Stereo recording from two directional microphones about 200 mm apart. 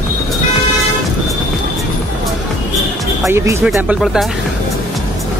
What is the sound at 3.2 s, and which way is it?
Speech, 15° right (ahead or behind).